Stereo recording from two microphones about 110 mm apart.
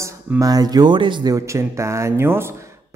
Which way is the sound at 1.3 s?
25° right (ahead or behind).